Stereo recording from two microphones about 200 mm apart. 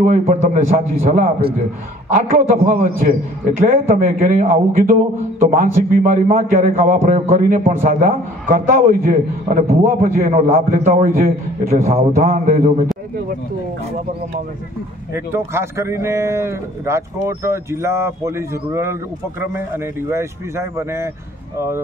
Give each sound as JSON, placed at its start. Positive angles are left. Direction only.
{"t": 0.0, "sound": "a man's voice", "side_deg": -35}
{"t": 2.2, "sound": "a man's voice", "side_deg": -35}
{"t": 15.1, "sound": "speech", "side_deg": -10}